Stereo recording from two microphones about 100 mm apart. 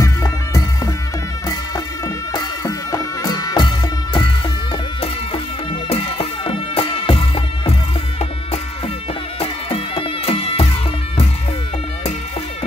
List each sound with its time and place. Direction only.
2.3 s music: 35° left (ahead or behind)
5.9 s music: 80° left
8.2 s music: 90° left
9.4 s music: 60° left (ahead or behind)